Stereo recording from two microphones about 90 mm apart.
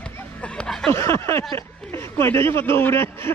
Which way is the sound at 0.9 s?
30° left (ahead or behind).